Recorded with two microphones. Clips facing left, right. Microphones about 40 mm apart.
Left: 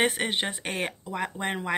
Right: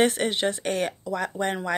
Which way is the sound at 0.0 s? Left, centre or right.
Left.